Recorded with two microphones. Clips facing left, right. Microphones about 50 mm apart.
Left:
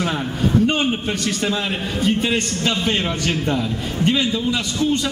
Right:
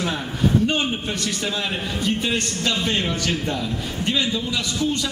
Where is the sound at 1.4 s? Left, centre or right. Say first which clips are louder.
Left 3 dB; left.